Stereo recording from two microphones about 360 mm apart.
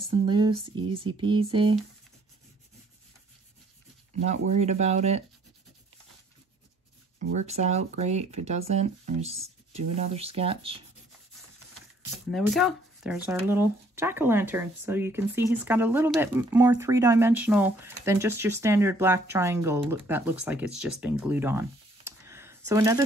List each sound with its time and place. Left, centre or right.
0.2 s speech: centre
4.2 s speech: centre
7.2 s speech: right
12.3 s speech: centre